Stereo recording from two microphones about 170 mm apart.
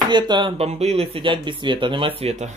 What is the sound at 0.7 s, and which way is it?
Speech, 40° right (ahead or behind).